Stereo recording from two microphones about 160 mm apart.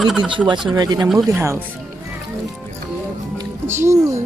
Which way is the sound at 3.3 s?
15° right (ahead or behind).